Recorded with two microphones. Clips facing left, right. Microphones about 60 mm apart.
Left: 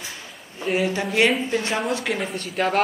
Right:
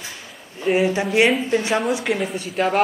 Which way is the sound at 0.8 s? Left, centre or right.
Centre.